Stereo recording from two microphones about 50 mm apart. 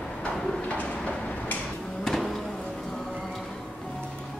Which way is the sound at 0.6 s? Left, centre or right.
Left.